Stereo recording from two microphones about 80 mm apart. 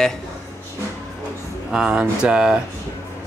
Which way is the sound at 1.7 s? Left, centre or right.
Centre.